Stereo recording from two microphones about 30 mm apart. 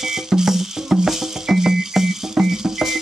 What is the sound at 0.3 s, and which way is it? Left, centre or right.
Music, centre.